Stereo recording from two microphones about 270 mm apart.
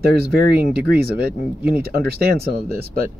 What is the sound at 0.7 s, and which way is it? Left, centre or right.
Speech, right.